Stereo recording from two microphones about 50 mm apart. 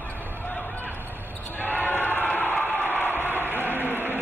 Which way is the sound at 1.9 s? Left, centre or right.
Left.